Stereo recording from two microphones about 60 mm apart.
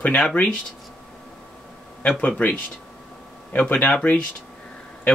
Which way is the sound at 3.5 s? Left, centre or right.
Left.